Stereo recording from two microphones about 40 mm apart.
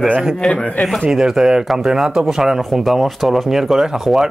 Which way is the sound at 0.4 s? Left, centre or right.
Centre.